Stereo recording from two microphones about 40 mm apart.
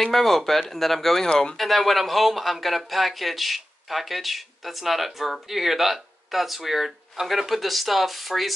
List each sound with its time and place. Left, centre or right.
0.0 s speech: centre
1.3 s speech: centre
1.6 s speech: centre